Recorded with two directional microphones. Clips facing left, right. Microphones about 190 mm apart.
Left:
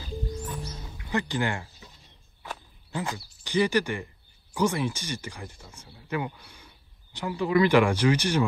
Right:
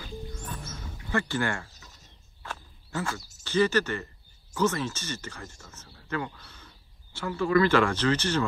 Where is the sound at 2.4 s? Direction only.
15° left (ahead or behind).